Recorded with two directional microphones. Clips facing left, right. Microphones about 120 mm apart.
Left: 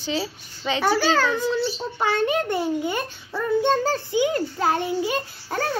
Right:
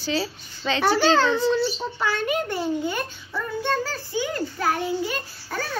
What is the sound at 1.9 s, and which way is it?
A child's voice, 25° left (ahead or behind).